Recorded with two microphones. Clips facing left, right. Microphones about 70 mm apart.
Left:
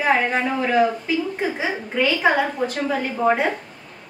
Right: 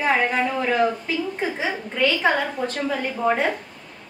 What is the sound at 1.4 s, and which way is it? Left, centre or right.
A woman's voice, centre.